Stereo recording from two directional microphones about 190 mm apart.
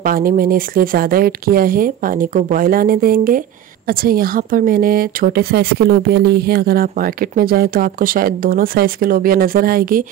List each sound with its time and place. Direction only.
0.0 s speech: 50° right (ahead or behind)